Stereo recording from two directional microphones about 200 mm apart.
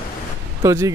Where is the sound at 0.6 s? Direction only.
15° right (ahead or behind).